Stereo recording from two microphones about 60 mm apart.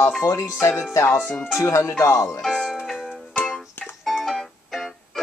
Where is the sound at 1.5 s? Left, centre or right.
Left.